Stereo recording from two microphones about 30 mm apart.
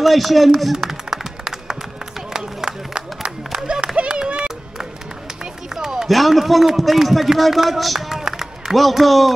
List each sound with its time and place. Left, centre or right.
0.0 s a man's voice: centre
0.7 s a sound: centre
3.9 s run: right
5.4 s run: centre
6.0 s a man's voice: centre
8.1 s run: centre
8.7 s a man's voice: centre